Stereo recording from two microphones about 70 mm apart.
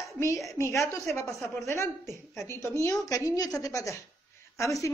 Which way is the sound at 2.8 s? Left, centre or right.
Left.